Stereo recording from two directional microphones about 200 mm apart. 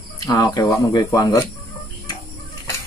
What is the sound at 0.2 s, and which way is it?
Speech, 20° left (ahead or behind).